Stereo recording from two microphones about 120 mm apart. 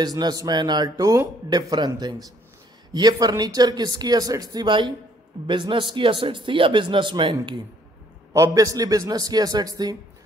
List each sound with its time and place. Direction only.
0.0 s speech: 35° right (ahead or behind)
8.3 s speech: 30° right (ahead or behind)